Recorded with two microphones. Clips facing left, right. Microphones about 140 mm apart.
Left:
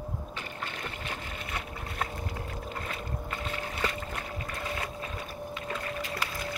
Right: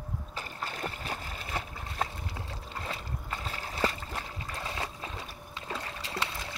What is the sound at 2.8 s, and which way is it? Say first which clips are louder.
Boat: left 2 dB; 30° right (ahead or behind).